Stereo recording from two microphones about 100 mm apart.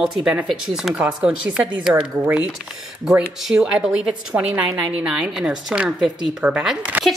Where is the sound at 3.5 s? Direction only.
5° right (ahead or behind).